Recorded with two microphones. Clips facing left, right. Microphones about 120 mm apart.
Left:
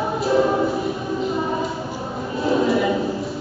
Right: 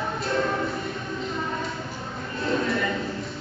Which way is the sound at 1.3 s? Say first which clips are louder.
Left 7 dB; 25° left (ahead or behind).